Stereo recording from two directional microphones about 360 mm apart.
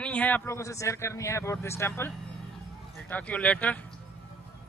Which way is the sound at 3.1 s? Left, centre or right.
Centre.